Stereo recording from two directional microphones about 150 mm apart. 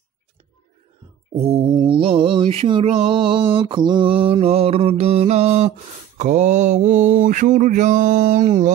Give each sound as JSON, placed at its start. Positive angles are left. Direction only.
{"t": 1.3, "sound": "mantra", "side_deg": -40}